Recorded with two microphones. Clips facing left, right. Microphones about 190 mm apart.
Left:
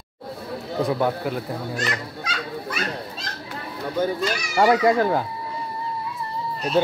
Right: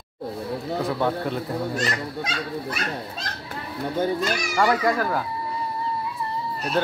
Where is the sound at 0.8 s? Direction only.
10° left (ahead or behind).